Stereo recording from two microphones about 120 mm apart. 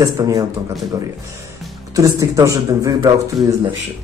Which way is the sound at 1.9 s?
25° right (ahead or behind).